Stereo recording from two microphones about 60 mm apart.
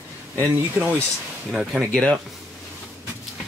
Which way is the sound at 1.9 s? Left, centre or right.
Centre.